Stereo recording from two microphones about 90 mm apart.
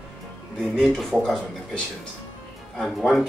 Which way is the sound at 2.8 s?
5° left (ahead or behind).